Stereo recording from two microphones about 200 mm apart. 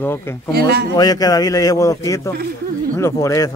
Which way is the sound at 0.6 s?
55° right (ahead or behind).